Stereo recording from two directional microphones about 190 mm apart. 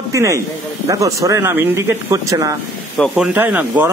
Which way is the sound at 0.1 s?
15° right (ahead or behind).